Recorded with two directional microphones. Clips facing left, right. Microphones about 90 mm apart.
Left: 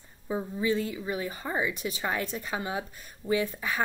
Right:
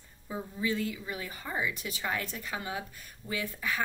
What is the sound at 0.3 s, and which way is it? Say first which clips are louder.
Speech: left 5 dB; 25° left (ahead or behind).